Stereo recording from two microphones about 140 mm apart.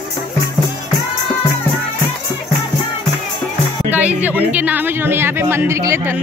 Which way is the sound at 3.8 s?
10° right (ahead or behind).